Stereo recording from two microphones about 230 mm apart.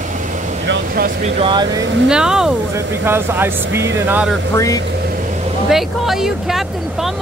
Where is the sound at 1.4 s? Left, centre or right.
Centre.